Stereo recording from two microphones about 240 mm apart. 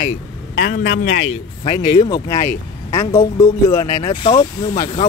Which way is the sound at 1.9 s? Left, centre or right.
Centre.